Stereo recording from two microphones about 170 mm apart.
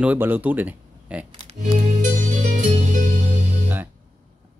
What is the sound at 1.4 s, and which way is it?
Music, 50° right (ahead or behind).